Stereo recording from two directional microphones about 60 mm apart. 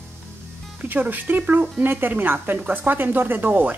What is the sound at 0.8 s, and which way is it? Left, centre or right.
Speech, right.